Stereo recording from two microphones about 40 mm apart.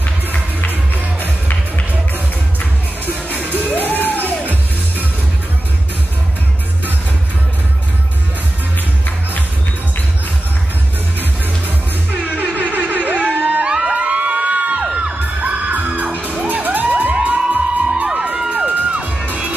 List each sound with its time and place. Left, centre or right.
0.3 s music: left
3.5 s music: left
3.9 s music: left
12.4 s a sound: right
13.7 s music: right
13.9 s crowd: right
14.8 s crowd: right
15.7 s music: right
17.3 s crowd: right
18.7 s music: right